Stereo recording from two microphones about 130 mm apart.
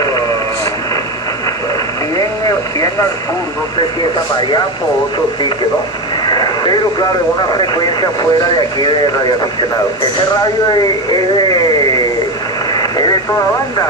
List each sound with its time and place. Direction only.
2.1 s radio: 25° left (ahead or behind)
6.2 s radio: 35° left (ahead or behind)
7.5 s speech: 30° left (ahead or behind)